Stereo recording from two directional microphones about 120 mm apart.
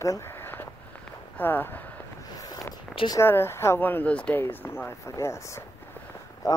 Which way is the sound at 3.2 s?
20° left (ahead or behind).